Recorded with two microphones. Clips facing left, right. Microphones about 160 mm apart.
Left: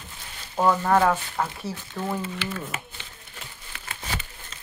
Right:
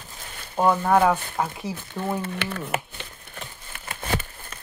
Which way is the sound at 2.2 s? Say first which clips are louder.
Right 2 dB; 60° right (ahead or behind).